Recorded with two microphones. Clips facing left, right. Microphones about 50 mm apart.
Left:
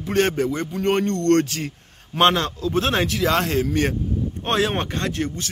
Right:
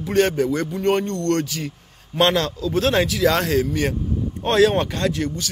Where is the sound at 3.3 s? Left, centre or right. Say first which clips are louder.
Right 1 dB; centre.